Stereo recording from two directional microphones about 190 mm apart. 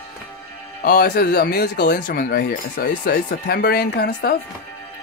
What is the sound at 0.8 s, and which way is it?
Speech, 55° left (ahead or behind).